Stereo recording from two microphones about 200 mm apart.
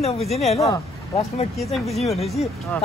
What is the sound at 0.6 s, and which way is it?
Speech, 15° left (ahead or behind).